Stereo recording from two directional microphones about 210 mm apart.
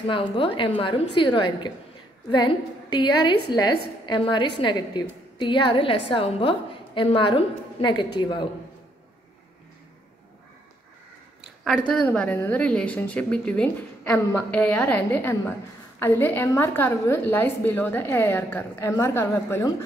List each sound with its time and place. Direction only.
0.1 s a woman's voice: 25° left (ahead or behind)
3.3 s a woman's voice: 50° left (ahead or behind)
4.0 s a woman's voice: 20° left (ahead or behind)
11.9 s a woman's voice: 5° left (ahead or behind)